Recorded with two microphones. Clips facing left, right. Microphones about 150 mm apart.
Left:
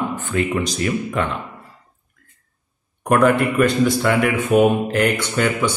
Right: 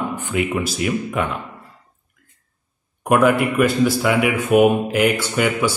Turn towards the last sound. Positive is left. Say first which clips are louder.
# even
turn(degrees=-10)  # may be behind; listen again after turning